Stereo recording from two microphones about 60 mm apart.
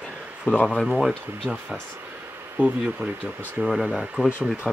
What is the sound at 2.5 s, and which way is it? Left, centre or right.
Speech, right.